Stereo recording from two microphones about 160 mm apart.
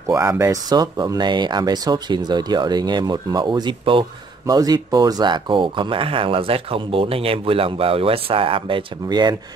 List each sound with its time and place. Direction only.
0.4 s speech: 25° right (ahead or behind)